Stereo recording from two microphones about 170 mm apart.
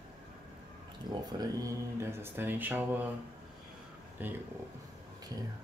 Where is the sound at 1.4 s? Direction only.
20° right (ahead or behind).